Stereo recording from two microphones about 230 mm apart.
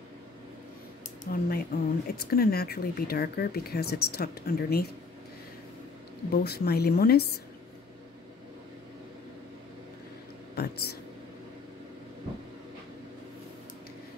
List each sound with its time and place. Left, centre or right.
1.2 s speech: left
6.3 s speech: left
10.5 s speech: left